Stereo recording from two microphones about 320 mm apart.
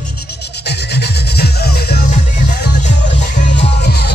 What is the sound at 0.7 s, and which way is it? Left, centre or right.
Music, left.